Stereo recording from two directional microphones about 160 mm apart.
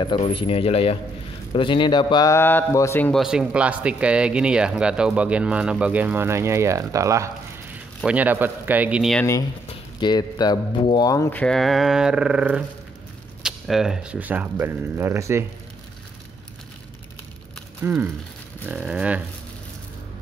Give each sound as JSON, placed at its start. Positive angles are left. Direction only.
{"t": 0.0, "sound": "a man's voice", "side_deg": 30}
{"t": 3.1, "sound": "speech", "side_deg": -5}
{"t": 8.0, "sound": "speech", "side_deg": -10}
{"t": 9.9, "sound": "a man's voice", "side_deg": 25}
{"t": 11.3, "sound": "speech", "side_deg": 5}
{"t": 17.8, "sound": "speech", "side_deg": -15}